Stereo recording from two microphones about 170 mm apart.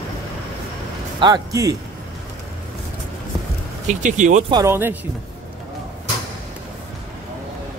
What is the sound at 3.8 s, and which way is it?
Speech, 45° right (ahead or behind).